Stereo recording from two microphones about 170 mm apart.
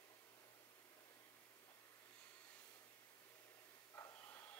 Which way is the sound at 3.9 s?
15° left (ahead or behind).